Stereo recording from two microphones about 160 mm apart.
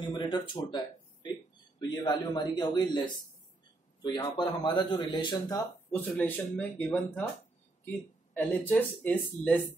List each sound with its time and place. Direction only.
0.2 s speech: 30° left (ahead or behind)
4.0 s speech: 30° left (ahead or behind)
6.0 s speech: 10° left (ahead or behind)
8.4 s speech: 10° left (ahead or behind)